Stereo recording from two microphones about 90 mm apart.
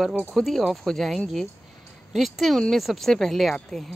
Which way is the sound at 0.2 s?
5° right (ahead or behind).